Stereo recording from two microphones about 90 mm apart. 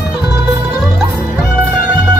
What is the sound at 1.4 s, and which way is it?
Music, 15° right (ahead or behind).